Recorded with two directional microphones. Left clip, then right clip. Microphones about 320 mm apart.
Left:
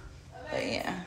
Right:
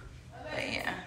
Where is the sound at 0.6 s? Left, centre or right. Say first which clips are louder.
Even; centre.